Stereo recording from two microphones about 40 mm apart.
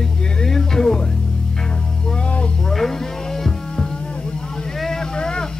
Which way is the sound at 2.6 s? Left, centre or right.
Centre.